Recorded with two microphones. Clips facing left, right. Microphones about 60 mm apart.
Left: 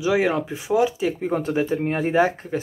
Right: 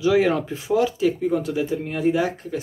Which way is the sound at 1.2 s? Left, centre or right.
Left.